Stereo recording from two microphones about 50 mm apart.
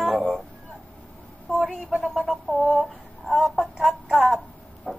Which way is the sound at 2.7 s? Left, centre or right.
Centre.